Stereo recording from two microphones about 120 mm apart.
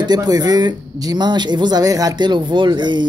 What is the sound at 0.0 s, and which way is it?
Speech, 35° right (ahead or behind).